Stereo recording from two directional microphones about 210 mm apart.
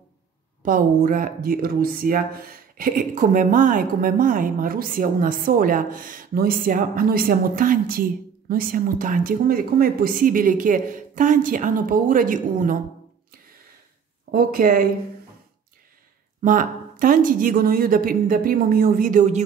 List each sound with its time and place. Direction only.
0.6 s speech: 40° right (ahead or behind)
14.3 s speech: 40° right (ahead or behind)
16.4 s speech: 40° right (ahead or behind)